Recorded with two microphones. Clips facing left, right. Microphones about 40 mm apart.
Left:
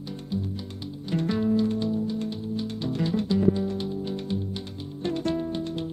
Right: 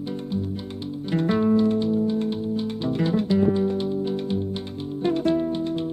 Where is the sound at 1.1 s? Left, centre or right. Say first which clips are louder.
Right 4 dB; right.